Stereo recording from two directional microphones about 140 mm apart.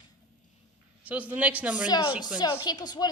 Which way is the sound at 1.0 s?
10° right (ahead or behind).